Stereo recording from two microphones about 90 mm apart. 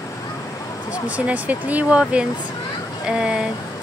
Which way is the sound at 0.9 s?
15° right (ahead or behind).